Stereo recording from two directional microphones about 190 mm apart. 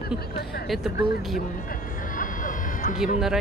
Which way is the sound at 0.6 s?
Centre (ahead or behind).